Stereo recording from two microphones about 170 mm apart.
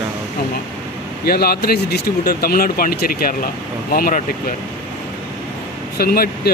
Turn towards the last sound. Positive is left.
turn(degrees=60)  # may be behind; listen again after turning